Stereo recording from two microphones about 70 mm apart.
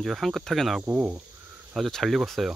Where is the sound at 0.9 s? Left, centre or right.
Right.